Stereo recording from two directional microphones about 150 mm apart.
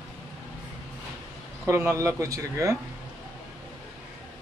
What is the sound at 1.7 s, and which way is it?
Speech, 20° right (ahead or behind).